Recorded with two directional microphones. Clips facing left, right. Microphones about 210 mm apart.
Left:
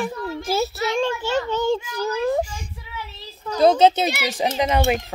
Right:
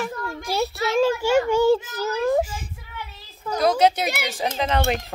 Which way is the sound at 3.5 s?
25° left (ahead or behind).